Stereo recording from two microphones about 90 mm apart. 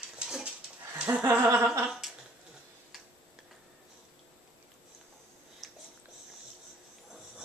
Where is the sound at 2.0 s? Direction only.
Centre (ahead or behind).